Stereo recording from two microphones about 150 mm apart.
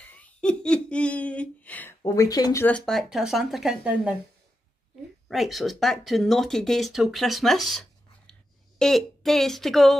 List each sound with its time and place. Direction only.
0.0 s giggle: 10° left (ahead or behind)
2.0 s speech: 25° left (ahead or behind)
2.6 s speech: 5° left (ahead or behind)
5.3 s a woman's voice: centre (ahead or behind)